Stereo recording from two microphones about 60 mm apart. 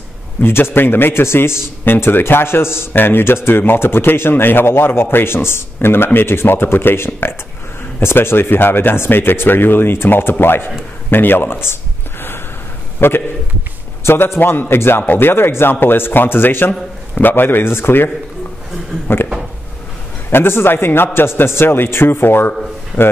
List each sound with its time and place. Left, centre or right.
0.4 s a man's voice: left
11.1 s a sound: left
13.0 s a man's voice: left
20.2 s a man's voice: left